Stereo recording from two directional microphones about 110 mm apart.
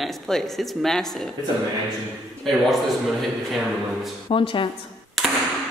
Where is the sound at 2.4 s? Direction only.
Centre (ahead or behind).